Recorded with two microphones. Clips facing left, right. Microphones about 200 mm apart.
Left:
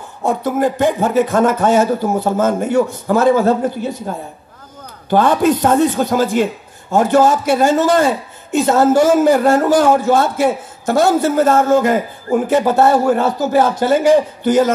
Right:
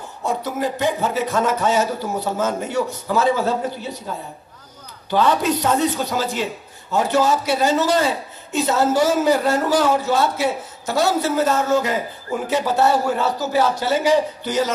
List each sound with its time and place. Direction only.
0.2 s a man's voice: 50° left (ahead or behind)
5.1 s a man's voice: 50° left (ahead or behind)